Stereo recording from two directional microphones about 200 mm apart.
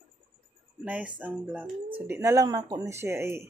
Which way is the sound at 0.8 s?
5° right (ahead or behind).